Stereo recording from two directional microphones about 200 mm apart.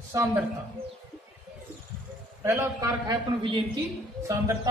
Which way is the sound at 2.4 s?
10° right (ahead or behind).